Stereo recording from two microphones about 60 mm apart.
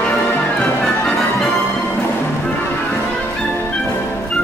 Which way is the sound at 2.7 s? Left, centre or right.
Left.